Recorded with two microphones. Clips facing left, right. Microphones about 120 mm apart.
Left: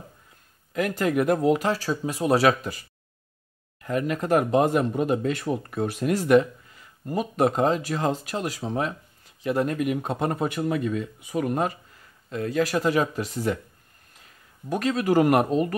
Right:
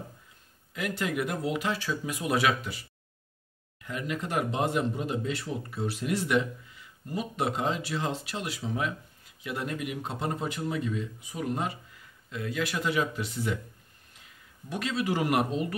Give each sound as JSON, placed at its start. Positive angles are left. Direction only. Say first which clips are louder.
{"t": 0.7, "sound": "speech", "louder": "left 7 dB", "side_deg": 45}
{"t": 3.8, "sound": "a man's voice", "louder": "left 8 dB", "side_deg": 45}